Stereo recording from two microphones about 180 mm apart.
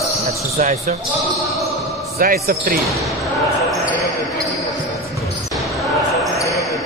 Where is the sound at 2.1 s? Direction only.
55° right (ahead or behind).